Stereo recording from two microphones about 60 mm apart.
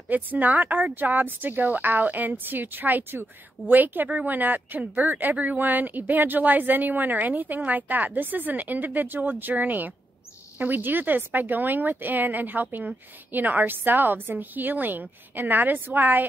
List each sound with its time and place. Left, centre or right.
0.1 s speech: right